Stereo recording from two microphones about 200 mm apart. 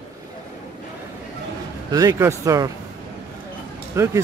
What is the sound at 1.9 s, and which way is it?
Speech, 20° right (ahead or behind).